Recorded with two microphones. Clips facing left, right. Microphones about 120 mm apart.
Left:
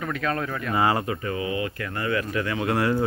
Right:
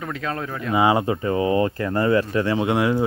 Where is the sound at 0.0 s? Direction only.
20° right (ahead or behind).